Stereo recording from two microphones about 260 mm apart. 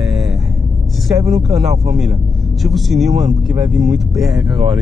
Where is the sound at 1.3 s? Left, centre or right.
Centre.